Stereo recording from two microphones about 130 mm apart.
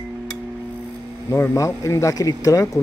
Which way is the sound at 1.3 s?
20° left (ahead or behind).